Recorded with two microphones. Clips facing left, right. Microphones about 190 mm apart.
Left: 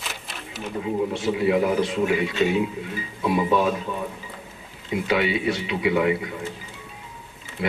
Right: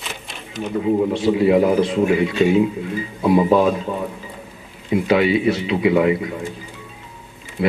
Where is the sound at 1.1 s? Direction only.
25° right (ahead or behind).